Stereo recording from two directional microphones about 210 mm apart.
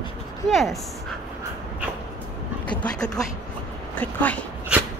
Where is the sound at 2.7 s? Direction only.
5° left (ahead or behind).